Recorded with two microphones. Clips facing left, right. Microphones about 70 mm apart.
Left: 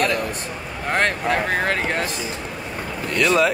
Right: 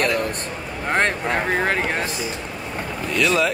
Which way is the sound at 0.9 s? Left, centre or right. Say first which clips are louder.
Even; right.